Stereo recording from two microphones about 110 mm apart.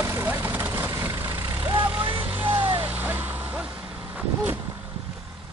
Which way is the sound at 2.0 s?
50° right (ahead or behind).